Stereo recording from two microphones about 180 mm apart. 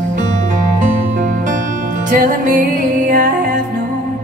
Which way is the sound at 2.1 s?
50° right (ahead or behind).